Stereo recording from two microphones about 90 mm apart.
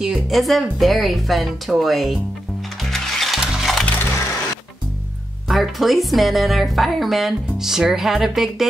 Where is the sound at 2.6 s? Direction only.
Centre (ahead or behind).